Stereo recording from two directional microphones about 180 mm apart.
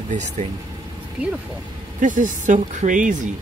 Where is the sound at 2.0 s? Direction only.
45° right (ahead or behind).